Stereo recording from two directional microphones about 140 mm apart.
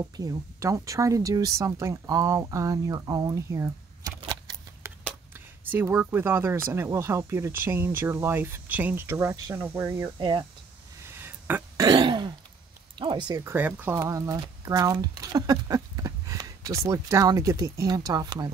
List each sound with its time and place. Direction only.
0.2 s speech: 25° right (ahead or behind)
4.2 s shuffling cards: 30° right (ahead or behind)
4.8 s speech: 15° right (ahead or behind)
11.1 s a sound: 15° right (ahead or behind)
11.8 s throat clearing: 35° right (ahead or behind)
12.9 s a sound: 35° right (ahead or behind)
13.4 s speech: 15° right (ahead or behind)